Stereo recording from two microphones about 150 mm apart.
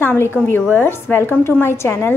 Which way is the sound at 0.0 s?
15° left (ahead or behind).